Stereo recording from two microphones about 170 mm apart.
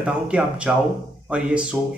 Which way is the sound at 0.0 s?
5° right (ahead or behind).